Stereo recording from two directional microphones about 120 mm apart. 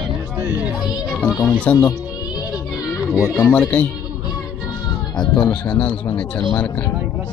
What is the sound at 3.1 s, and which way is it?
Speech, 20° left (ahead or behind).